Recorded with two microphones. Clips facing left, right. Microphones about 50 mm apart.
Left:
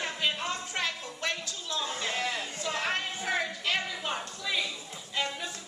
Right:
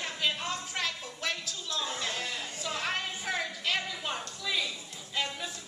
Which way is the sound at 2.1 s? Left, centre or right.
Left.